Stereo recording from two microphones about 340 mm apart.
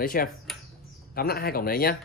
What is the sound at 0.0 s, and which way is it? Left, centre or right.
Speech, left.